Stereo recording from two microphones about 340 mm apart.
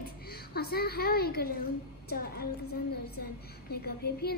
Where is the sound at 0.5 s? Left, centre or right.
Left.